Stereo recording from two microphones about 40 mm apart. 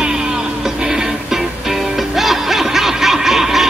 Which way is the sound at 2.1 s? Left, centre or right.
Centre.